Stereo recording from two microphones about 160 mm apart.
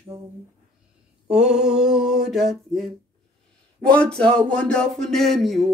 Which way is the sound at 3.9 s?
5° left (ahead or behind).